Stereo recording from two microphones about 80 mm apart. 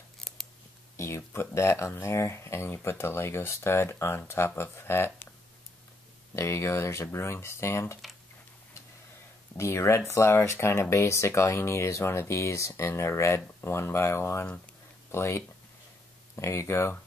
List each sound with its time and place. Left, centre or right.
0.2 s scissors: centre
0.9 s speech: left
6.3 s speech: left
9.6 s speech: left